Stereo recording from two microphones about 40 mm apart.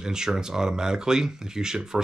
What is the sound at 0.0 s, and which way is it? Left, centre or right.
Speech, centre.